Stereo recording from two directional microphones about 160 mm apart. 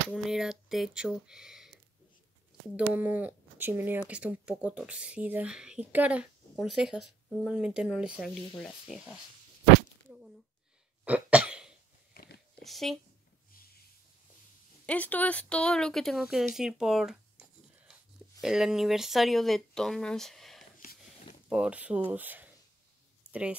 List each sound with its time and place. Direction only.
0.1 s speech: centre (ahead or behind)
2.7 s speech: 10° right (ahead or behind)
11.1 s cough: 10° right (ahead or behind)
12.1 s biting: 75° left (ahead or behind)
12.6 s speech: centre (ahead or behind)
14.9 s speech: 10° left (ahead or behind)
16.5 s writing: 5° right (ahead or behind)
18.4 s speech: 5° right (ahead or behind)